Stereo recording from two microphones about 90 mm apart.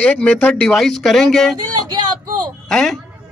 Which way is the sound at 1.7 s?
50° right (ahead or behind).